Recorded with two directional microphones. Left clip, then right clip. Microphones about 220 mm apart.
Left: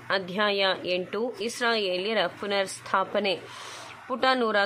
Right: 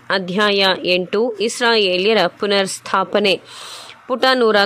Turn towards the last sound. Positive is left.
turn(degrees=-35)  # may be behind; listen again after turning